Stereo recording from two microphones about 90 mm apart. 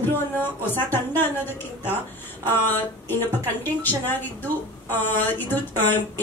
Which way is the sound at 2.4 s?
25° left (ahead or behind).